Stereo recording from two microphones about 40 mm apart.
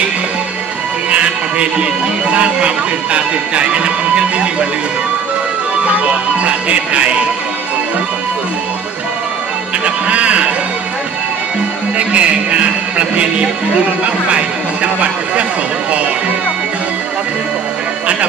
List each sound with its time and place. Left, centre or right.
1.1 s speech: right
5.9 s speech: right
9.8 s music: right
12.0 s speech: right